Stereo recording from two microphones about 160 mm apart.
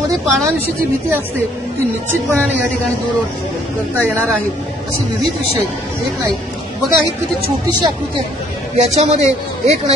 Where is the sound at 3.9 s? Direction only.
15° right (ahead or behind).